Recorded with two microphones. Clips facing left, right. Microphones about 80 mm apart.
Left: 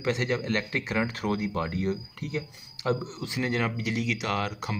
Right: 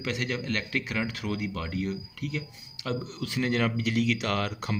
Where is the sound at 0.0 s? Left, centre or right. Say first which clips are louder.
Left 4 dB; left.